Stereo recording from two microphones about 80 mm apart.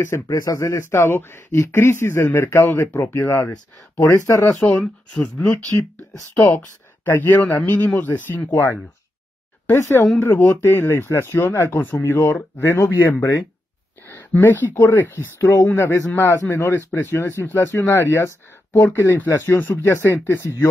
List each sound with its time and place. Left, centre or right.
0.3 s speech: left
4.0 s speech: left
4.7 s speech: centre
5.8 s speech: left
7.1 s speech: left
8.5 s speech: left
9.8 s speech: left
14.0 s speech: left